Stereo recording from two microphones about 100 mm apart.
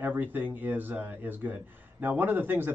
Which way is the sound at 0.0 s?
20° right (ahead or behind).